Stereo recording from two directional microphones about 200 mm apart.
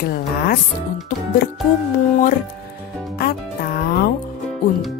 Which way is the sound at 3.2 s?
50° left (ahead or behind).